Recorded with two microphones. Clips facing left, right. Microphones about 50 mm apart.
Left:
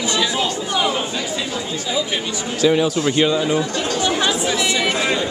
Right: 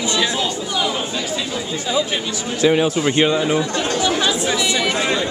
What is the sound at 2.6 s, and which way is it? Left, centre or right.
Speech, right.